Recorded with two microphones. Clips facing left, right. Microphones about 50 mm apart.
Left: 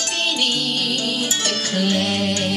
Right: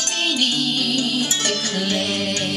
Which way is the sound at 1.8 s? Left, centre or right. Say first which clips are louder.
Left 5 dB; centre.